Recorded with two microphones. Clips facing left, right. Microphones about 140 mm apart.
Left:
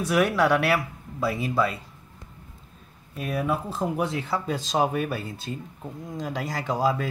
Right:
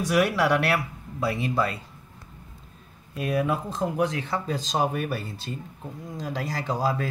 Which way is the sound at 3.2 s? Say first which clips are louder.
Right 2 dB; 5° left (ahead or behind).